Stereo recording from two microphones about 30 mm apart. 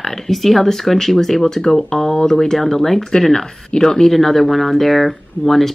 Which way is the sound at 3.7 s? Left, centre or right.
Left.